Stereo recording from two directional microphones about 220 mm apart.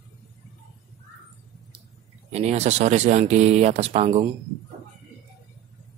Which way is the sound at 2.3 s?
30° right (ahead or behind).